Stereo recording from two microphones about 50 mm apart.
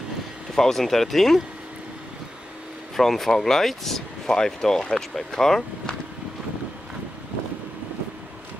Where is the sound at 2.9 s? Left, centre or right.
Centre.